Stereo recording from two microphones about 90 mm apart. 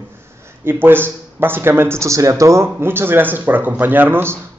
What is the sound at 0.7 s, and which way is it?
A man's voice, 25° right (ahead or behind).